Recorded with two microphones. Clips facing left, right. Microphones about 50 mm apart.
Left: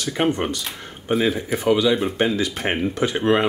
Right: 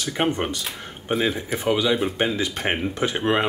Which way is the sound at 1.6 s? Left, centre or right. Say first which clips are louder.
Left 4 dB; centre.